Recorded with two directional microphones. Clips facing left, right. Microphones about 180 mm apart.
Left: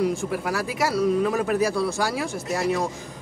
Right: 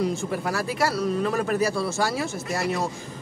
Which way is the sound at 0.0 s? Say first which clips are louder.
Left 1 dB; 10° left (ahead or behind).